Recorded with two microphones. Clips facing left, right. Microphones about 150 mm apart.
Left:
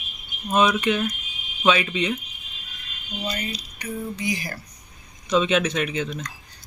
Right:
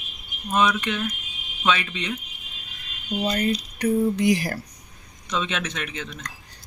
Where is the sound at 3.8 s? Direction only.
70° right (ahead or behind).